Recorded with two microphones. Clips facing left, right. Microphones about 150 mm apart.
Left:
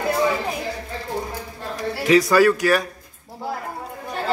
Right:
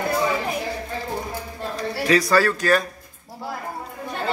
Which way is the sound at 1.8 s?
20° left (ahead or behind).